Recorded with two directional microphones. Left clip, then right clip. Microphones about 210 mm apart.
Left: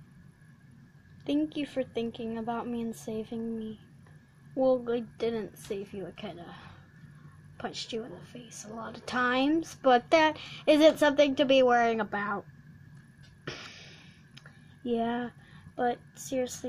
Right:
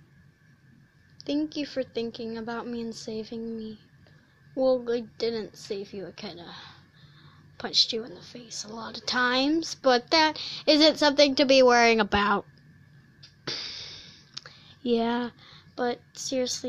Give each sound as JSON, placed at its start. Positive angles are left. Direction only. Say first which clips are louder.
{"t": 1.2, "sound": "speech", "louder": "right 1 dB", "side_deg": 0}
{"t": 7.9, "sound": "speech", "louder": "right 4 dB", "side_deg": -5}
{"t": 13.6, "sound": "music", "louder": "right 9 dB", "side_deg": -40}
{"t": 14.8, "sound": "a woman's voice", "louder": "right 5 dB", "side_deg": -15}